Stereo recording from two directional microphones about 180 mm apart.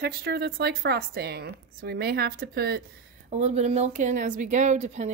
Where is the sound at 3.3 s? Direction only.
40° right (ahead or behind).